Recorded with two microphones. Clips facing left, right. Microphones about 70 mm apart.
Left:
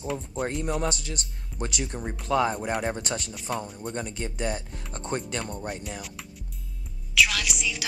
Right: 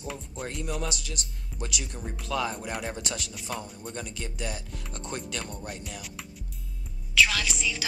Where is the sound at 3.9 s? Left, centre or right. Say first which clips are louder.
Left 4 dB; left.